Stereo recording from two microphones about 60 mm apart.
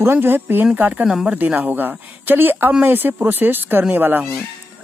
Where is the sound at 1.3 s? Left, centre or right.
Right.